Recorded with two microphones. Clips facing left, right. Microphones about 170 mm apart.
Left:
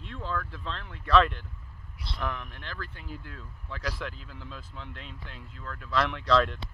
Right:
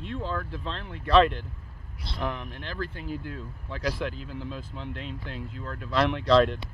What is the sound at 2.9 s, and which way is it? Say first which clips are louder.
Speech: right 8 dB; 85° right.